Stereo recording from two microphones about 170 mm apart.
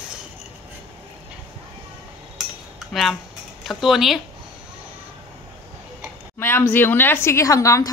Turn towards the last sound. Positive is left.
turn(degrees=20)  # may be behind; listen again after turning